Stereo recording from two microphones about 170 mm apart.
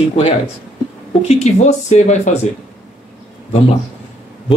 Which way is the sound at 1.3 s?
40° left (ahead or behind).